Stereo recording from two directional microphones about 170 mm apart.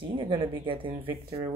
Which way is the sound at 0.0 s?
30° right (ahead or behind).